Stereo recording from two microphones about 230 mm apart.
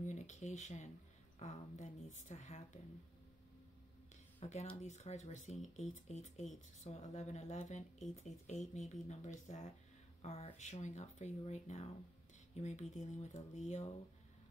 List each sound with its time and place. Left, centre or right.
0.0 s speech: left
4.4 s speech: left